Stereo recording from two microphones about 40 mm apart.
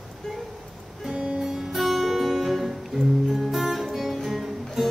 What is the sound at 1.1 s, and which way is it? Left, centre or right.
Music, right.